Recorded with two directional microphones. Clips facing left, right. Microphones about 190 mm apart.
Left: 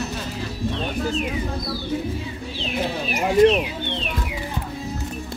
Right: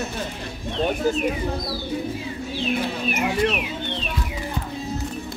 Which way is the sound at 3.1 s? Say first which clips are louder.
Left 8 dB; 35° left (ahead or behind).